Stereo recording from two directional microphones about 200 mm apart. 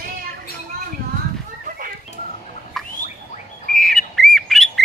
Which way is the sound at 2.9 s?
40° left (ahead or behind).